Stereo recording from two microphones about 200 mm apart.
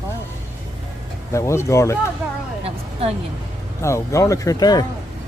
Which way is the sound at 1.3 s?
15° left (ahead or behind).